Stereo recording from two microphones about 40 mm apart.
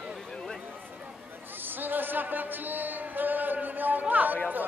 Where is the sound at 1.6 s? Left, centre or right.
Right.